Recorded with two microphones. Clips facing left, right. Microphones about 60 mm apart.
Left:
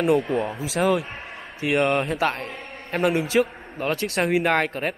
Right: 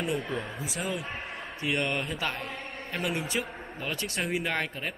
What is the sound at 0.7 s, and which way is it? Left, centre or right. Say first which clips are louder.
Speech: left 14 dB; left.